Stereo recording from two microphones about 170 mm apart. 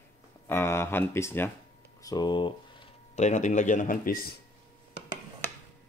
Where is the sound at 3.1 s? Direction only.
45° left (ahead or behind).